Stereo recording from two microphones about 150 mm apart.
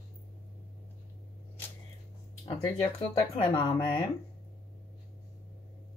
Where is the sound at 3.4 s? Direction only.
35° left (ahead or behind).